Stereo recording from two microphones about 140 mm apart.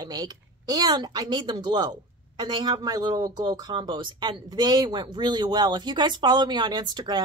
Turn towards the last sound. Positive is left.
turn(degrees=-30)  # may be behind; listen again after turning